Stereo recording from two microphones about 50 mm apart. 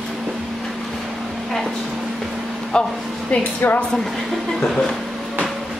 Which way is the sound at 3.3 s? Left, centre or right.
Left.